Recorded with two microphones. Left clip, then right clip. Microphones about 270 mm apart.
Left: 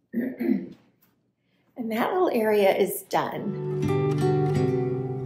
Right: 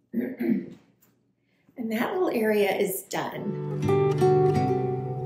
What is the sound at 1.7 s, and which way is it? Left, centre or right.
A woman's voice, centre.